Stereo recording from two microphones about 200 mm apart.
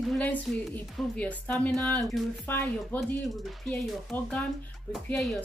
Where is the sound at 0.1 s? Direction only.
10° left (ahead or behind).